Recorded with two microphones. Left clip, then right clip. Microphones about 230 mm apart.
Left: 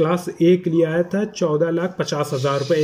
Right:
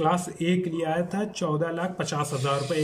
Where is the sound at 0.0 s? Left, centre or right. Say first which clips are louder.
Left 7 dB; centre.